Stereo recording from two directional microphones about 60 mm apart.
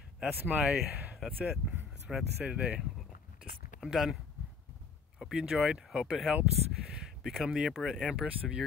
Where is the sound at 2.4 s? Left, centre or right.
Centre.